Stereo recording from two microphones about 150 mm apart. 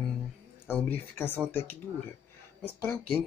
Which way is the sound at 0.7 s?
10° left (ahead or behind).